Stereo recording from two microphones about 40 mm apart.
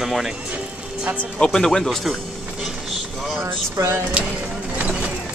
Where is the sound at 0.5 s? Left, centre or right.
Right.